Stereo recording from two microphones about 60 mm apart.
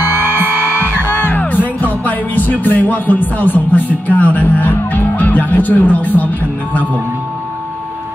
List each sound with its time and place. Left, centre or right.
0.8 s music: left